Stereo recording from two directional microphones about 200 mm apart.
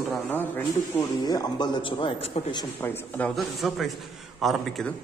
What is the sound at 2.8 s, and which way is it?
Speech, 10° left (ahead or behind).